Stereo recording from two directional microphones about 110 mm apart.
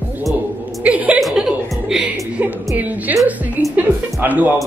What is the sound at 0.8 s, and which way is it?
Chuckle, 10° right (ahead or behind).